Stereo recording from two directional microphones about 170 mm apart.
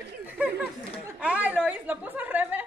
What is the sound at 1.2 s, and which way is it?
A woman's voice, 10° right (ahead or behind).